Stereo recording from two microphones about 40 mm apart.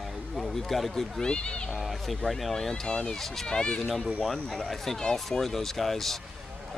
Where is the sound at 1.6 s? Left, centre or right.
Centre; by 3.1 s left.